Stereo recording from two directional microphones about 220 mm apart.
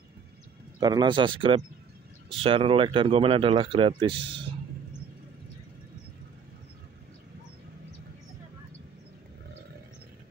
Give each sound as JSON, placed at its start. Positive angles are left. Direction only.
{"t": 0.7, "sound": "speech", "side_deg": -20}